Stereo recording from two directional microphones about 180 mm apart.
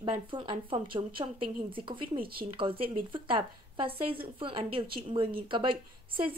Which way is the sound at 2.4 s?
30° right (ahead or behind).